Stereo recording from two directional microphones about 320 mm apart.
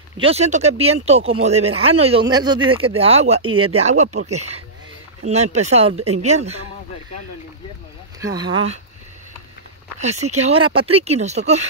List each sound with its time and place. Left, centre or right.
0.2 s speech: centre
9.9 s speech: right